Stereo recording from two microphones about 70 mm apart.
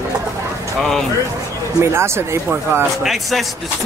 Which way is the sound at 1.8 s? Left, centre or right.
Right.